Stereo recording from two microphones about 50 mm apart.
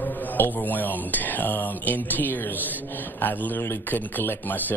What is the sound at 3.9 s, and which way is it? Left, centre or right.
Speech, left.